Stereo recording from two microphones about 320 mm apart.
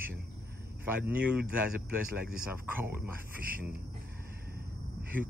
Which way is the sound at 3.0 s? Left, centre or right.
Right.